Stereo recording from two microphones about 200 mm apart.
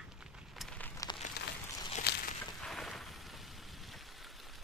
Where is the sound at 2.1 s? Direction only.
55° left (ahead or behind).